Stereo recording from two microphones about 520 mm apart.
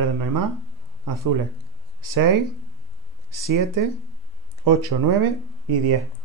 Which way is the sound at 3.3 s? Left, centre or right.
Right.